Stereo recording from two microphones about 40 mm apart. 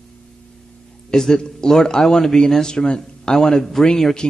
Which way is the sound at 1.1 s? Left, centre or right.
Centre.